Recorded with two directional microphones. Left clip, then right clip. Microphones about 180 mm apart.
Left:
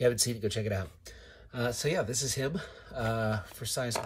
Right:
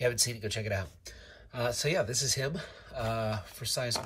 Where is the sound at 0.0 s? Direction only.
15° left (ahead or behind).